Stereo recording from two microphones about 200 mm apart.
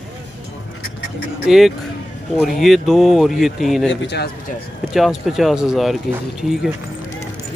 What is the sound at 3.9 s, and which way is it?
Speech, 60° left (ahead or behind).